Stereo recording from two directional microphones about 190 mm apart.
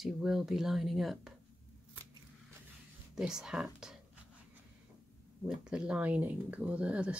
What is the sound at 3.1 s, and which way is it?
Speech, 5° right (ahead or behind).